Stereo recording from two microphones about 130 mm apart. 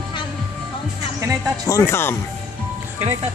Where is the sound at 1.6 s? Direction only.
25° left (ahead or behind).